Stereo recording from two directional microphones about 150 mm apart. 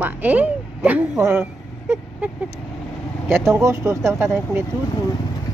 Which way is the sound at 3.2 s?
15° right (ahead or behind).